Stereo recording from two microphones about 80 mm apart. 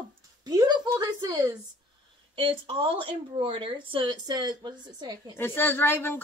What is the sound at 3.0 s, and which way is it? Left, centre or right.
Speech, right.